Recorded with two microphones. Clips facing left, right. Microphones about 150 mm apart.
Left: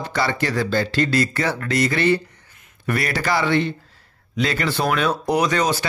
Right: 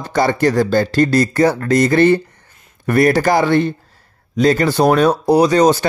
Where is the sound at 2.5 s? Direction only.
35° right (ahead or behind).